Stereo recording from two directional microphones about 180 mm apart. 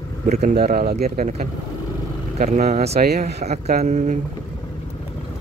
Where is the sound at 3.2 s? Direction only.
40° right (ahead or behind).